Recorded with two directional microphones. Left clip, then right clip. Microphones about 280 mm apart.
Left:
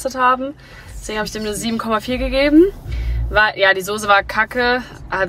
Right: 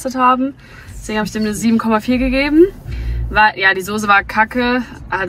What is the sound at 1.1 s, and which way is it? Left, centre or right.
A woman's voice, left.